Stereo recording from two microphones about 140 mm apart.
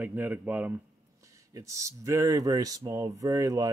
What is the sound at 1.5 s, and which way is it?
Speech, 20° right (ahead or behind).